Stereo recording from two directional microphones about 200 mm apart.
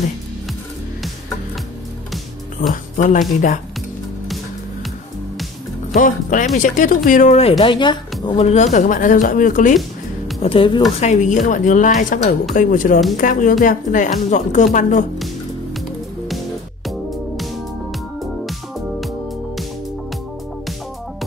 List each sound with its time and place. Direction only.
2.7 s speech: 40° left (ahead or behind)
5.9 s a woman's voice: 40° left (ahead or behind); by 8.4 s 25° left (ahead or behind)
8.4 s speech: 35° left (ahead or behind)
10.4 s a woman's voice: 25° left (ahead or behind)
11.0 s speech: 35° left (ahead or behind)
18.9 s music: centre (ahead or behind)